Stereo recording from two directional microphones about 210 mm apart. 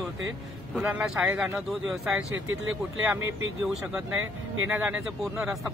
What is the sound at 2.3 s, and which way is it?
Speech, 70° right (ahead or behind).